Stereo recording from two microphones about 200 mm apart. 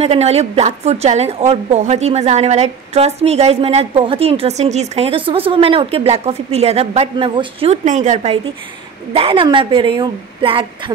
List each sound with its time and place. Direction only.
0.0 s a woman's voice: 30° right (ahead or behind)